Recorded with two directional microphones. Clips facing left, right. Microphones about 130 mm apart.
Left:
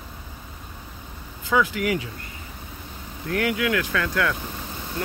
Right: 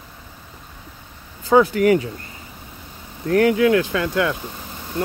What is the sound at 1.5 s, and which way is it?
Speech, 40° right (ahead or behind).